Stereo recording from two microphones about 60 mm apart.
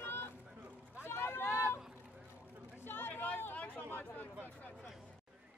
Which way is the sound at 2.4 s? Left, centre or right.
Right.